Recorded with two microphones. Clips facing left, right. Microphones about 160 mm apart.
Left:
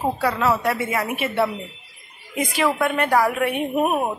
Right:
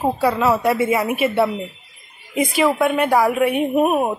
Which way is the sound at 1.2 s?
10° right (ahead or behind).